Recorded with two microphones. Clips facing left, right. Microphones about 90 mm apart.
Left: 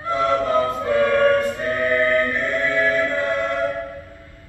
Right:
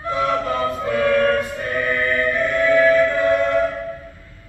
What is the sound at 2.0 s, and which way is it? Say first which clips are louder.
Music: even; 35° left (ahead or behind).